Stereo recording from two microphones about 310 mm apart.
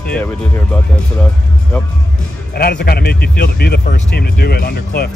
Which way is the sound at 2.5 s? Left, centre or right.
Left.